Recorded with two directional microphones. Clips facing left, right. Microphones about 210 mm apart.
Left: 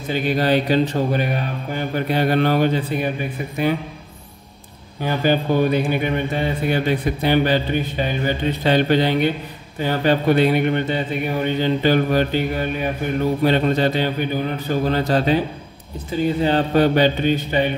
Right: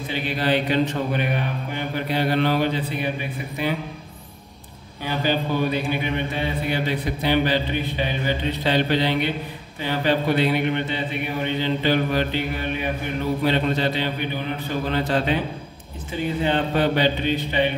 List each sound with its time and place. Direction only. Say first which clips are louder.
0.1 s speech: left 5 dB; 45° left (ahead or behind)
5.0 s speech: left 5 dB; 50° left (ahead or behind)